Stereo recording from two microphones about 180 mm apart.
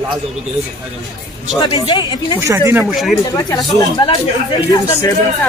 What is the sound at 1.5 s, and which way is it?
Speech, 25° left (ahead or behind).